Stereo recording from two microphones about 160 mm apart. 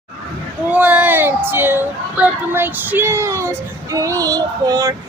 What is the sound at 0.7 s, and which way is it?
Speech, 10° right (ahead or behind).